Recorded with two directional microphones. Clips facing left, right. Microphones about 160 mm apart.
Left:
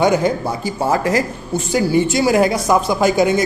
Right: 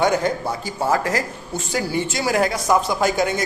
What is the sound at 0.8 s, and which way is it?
Speech, 20° left (ahead or behind).